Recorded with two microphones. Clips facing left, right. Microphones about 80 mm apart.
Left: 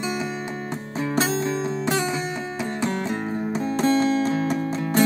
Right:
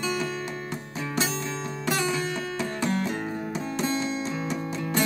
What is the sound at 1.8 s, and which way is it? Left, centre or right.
Music, left.